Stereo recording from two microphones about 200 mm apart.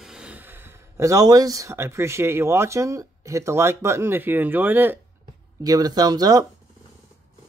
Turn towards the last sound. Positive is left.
turn(degrees=-20)  # may be behind; listen again after turning